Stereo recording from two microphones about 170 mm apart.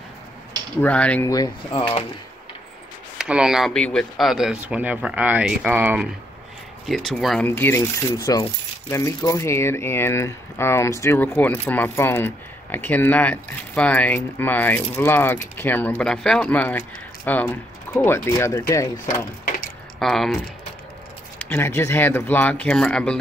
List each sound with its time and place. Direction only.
0.7 s speech: 10° left (ahead or behind)
1.2 s speech: 20° left (ahead or behind)
3.2 s speech: 5° right (ahead or behind)
6.9 s speech: centre (ahead or behind)
7.4 s speech: 10° left (ahead or behind)
20.0 s speech: centre (ahead or behind)
21.5 s speech: 15° left (ahead or behind)